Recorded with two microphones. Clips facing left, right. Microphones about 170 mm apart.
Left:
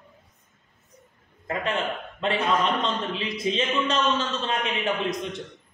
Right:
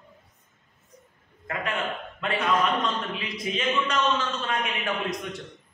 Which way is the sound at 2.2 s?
30° left (ahead or behind).